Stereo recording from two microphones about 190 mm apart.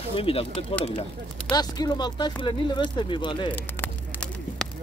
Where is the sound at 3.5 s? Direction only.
10° left (ahead or behind).